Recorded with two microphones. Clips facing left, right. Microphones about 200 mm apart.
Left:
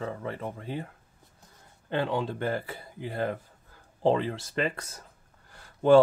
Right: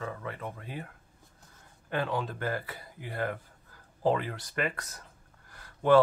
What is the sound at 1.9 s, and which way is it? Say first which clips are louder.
Speech: left 3 dB; 25° left (ahead or behind).